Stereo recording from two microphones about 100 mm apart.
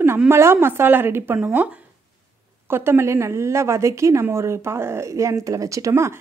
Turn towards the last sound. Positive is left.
turn(degrees=-30)  # may be behind; listen again after turning